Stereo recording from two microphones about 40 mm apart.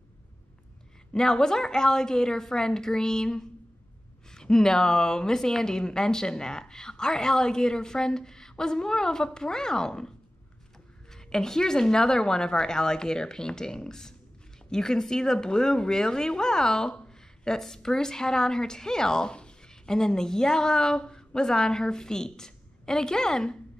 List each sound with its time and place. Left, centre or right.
1.1 s a woman's voice: centre